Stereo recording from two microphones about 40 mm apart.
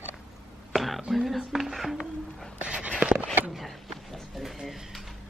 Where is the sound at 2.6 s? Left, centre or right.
Right.